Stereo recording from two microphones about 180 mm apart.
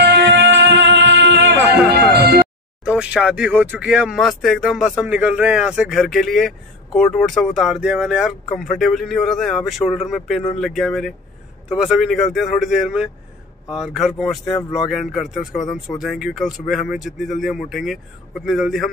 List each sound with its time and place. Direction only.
0.0 s music: 75° right (ahead or behind)
1.9 s music: 65° right (ahead or behind)
2.8 s speech: 5° right (ahead or behind)